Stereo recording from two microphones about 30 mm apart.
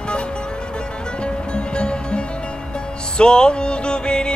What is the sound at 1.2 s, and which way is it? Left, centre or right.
Music, left.